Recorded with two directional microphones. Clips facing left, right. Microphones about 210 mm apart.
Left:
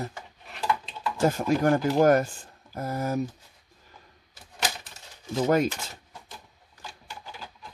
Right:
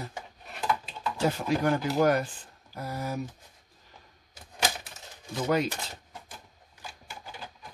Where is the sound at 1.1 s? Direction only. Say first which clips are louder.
Left 4 dB; 45° left (ahead or behind).